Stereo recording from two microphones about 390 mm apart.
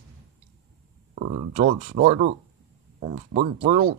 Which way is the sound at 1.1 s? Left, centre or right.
Centre.